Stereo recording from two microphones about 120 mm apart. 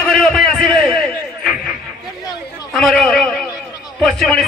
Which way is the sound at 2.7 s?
Centre (ahead or behind).